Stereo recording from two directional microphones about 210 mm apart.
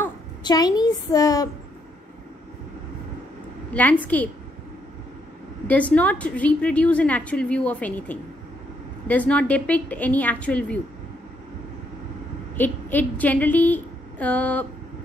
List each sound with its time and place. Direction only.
0.4 s a woman's voice: 20° left (ahead or behind)
4.0 s a woman's voice: 5° left (ahead or behind)
5.7 s a woman's voice: 5° left (ahead or behind)
12.5 s a woman's voice: 10° left (ahead or behind)